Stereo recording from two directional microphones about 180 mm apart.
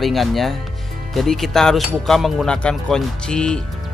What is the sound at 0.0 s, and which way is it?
Speech, centre (ahead or behind).